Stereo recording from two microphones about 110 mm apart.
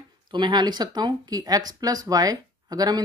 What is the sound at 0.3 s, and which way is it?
Speech, 45° right (ahead or behind).